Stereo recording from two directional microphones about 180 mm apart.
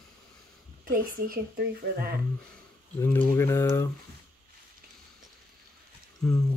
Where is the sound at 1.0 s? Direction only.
55° right (ahead or behind).